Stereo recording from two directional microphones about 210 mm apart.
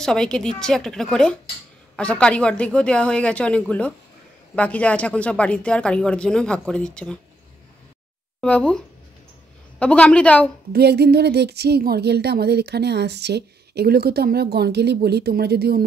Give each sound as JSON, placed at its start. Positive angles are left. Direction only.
{"t": 0.0, "sound": "speech", "side_deg": 5}
{"t": 8.4, "sound": "speech", "side_deg": 5}
{"t": 10.7, "sound": "speech", "side_deg": -50}